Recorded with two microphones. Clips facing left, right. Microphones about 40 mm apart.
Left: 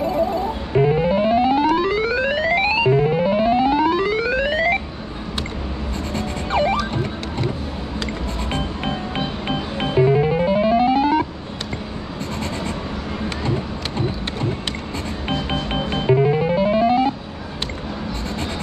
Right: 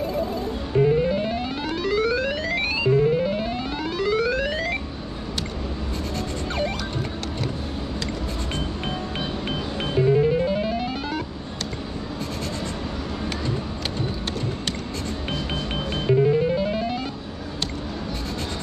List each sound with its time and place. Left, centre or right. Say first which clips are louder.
0.0 s music: left 6 dB; centre
6.1 s music: left 8 dB; left
8.5 s music: left 4 dB; centre
13.5 s a sound: left 4 dB; left
15.2 s music: left 7 dB; left